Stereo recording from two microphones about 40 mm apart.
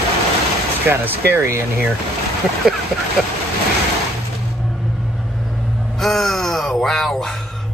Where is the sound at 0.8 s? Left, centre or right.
Right.